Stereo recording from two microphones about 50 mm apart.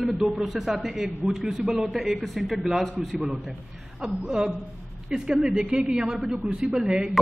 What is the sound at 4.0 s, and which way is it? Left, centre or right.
Speech, centre.